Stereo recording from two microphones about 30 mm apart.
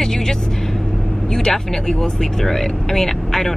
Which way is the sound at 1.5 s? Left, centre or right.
Centre.